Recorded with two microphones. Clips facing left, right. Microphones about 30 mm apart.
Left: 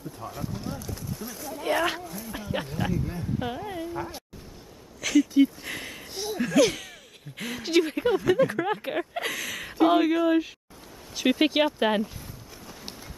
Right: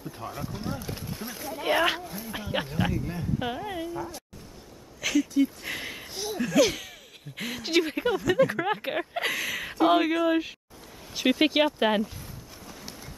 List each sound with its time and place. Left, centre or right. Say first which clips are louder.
0.3 s speech: even; centre
0.7 s speech: even; right
1.5 s speech: right 1 dB; centre
5.0 s a sound: left 3 dB; centre
5.6 s speech: right 1 dB; centre
6.0 s speech: left 2 dB; centre
11.4 s speech: right 1 dB; centre
12.0 s a sound: even; centre